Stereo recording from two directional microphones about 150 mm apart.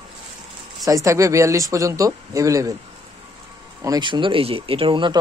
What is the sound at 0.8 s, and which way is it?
Speech, 20° right (ahead or behind).